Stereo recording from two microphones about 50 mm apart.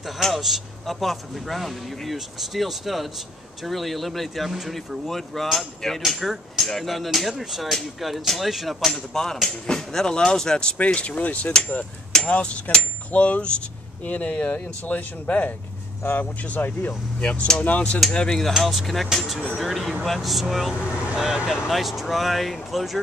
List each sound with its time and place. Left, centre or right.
0.2 s a man's voice: centre
10.9 s speech: left
12.1 s a man's voice: centre; by 16.6 s left
17.2 s speech: left
18.1 s speech: centre
18.6 s a man's voice: centre
21.5 s a man's voice: centre